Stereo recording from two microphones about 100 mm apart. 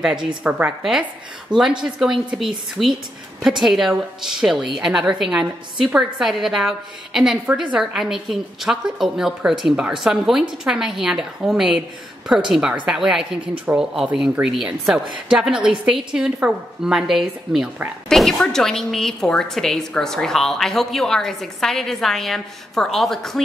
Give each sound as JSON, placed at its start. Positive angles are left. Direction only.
{"t": 0.0, "sound": "a woman's voice", "side_deg": -5}